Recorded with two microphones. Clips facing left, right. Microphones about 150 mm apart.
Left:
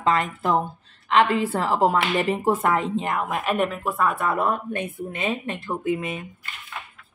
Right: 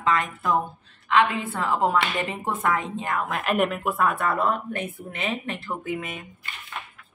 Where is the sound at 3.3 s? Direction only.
5° left (ahead or behind).